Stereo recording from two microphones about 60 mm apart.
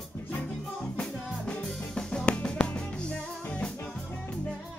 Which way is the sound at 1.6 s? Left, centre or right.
Centre.